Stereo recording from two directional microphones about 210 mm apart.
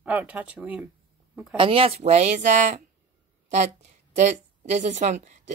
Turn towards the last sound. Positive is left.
turn(degrees=-35)  # may be behind; listen again after turning